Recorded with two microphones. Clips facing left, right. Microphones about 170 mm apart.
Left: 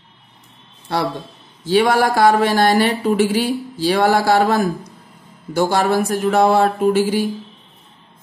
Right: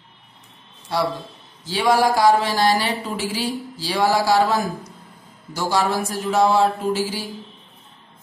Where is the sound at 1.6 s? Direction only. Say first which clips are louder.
Left 3 dB; 60° left (ahead or behind).